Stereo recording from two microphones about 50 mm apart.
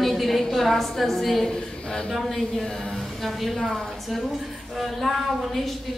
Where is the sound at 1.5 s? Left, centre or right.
Centre.